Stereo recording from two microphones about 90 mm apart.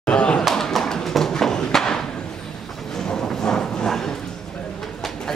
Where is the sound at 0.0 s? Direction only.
10° left (ahead or behind).